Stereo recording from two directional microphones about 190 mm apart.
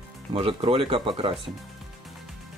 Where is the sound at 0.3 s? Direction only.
25° right (ahead or behind).